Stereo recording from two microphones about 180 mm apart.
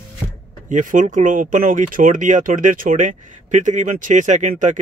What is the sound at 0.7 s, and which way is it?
Speech, 45° right (ahead or behind).